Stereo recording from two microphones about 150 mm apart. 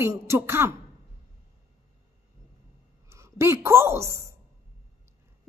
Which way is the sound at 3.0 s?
20° right (ahead or behind).